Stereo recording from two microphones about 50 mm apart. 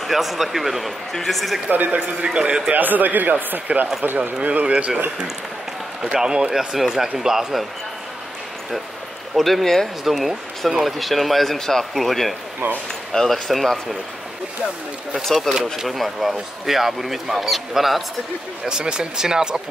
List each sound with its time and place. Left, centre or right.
0.0 s speech: centre
1.7 s speech: right
2.2 s speech: centre
2.7 s speech: right
6.0 s speech: centre
9.3 s speech: centre
12.6 s speech: right
13.1 s speech: centre
15.5 s speech: centre
18.7 s speech: centre